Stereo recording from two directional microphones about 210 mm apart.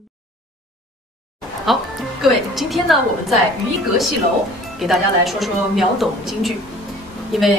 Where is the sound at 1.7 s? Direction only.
Centre (ahead or behind).